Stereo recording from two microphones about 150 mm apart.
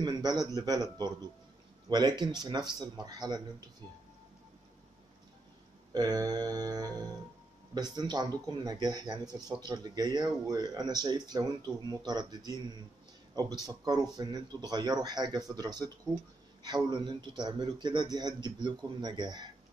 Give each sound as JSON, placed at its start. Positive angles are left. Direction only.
{"t": 0.0, "sound": "a man's voice", "side_deg": -25}
{"t": 1.9, "sound": "a man's voice", "side_deg": -30}
{"t": 5.9, "sound": "a man's voice", "side_deg": -25}